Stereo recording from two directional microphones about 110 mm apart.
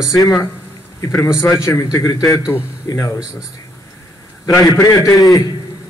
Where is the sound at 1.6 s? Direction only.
30° left (ahead or behind).